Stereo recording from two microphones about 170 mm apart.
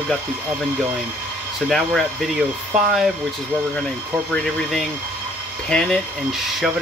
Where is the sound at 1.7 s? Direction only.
Centre (ahead or behind).